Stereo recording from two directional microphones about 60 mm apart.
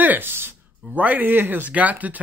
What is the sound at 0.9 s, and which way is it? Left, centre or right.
Speech, right.